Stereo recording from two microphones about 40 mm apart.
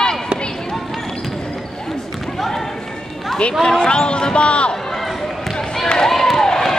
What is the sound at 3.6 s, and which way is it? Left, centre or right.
Speech, centre.